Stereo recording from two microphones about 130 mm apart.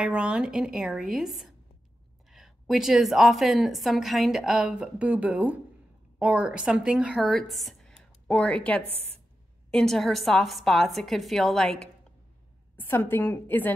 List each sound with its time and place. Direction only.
0.0 s a woman's voice: 10° right (ahead or behind); by 8.8 s 10° left (ahead or behind)
8.8 s a woman's voice: 50° right (ahead or behind)
9.7 s a woman's voice: 5° left (ahead or behind)
12.7 s a woman's voice: 15° left (ahead or behind)